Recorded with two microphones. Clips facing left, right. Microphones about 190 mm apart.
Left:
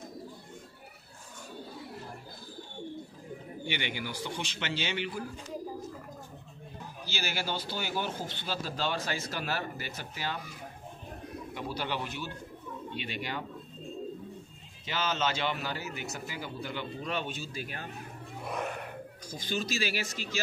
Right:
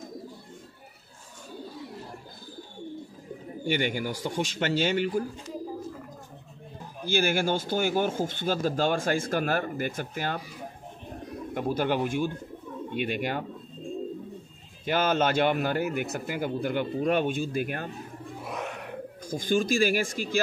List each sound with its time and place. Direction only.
3.6 s speech: 45° right (ahead or behind)
7.1 s speech: 50° right (ahead or behind)
11.5 s speech: 50° right (ahead or behind)
14.9 s speech: 50° right (ahead or behind)
18.4 s music: centre (ahead or behind)
19.2 s speech: 50° right (ahead or behind)